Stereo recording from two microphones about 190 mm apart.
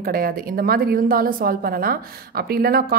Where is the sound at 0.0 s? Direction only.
50° right (ahead or behind).